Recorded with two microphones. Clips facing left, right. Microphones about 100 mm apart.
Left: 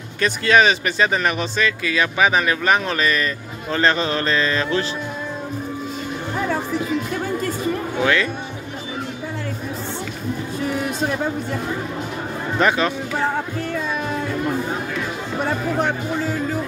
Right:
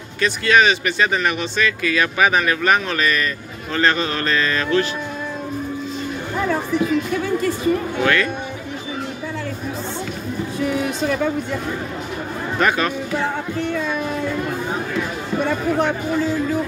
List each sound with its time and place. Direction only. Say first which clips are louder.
0.2 s speech: even; 35° left (ahead or behind)
8.0 s speech: left 1 dB; 20° left (ahead or behind)
12.5 s speech: left 1 dB; 25° left (ahead or behind)